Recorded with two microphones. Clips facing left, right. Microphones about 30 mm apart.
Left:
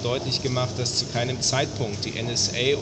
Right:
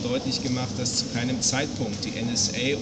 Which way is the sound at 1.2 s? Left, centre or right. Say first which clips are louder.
Left 2 dB; centre.